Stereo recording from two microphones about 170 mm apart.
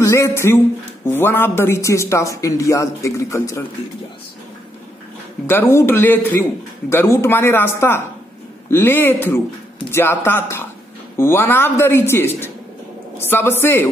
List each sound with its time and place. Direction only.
0.0 s a man's voice: 15° left (ahead or behind)
5.5 s a man's voice: 15° left (ahead or behind)